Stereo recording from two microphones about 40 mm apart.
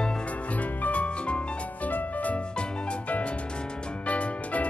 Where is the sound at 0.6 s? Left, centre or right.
Left.